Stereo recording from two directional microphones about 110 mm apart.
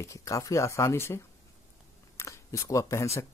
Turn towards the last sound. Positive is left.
turn(degrees=25)  # may be behind; listen again after turning